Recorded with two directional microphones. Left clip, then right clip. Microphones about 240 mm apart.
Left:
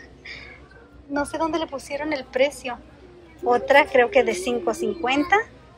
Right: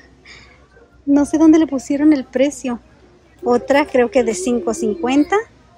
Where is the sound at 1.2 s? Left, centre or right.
Centre.